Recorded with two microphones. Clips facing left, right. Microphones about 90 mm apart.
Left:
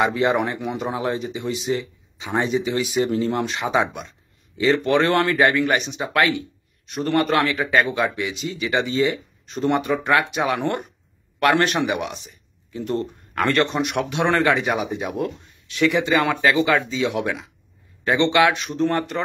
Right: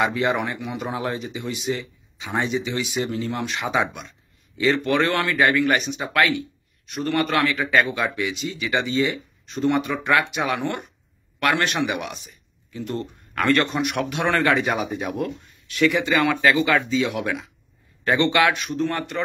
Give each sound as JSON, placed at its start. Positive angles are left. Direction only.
{"t": 0.0, "sound": "speech", "side_deg": 30}